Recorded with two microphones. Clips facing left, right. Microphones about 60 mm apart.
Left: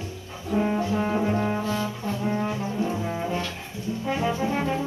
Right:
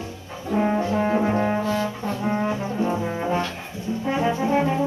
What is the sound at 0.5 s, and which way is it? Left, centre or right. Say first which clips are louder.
Brass instrument: right 3 dB; right.